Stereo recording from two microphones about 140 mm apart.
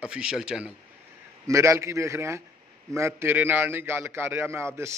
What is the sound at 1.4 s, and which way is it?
A man's voice, 20° right (ahead or behind).